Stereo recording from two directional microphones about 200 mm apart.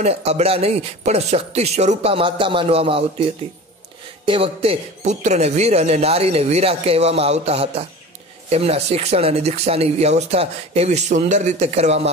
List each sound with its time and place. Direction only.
0.0 s speech: 30° right (ahead or behind)
4.3 s speech: 30° right (ahead or behind)